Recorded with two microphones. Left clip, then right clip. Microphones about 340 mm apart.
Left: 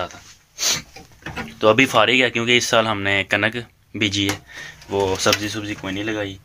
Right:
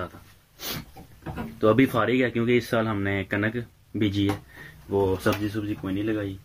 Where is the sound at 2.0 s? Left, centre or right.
Left.